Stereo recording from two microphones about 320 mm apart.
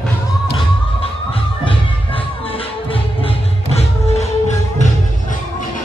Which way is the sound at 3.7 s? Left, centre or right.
Centre.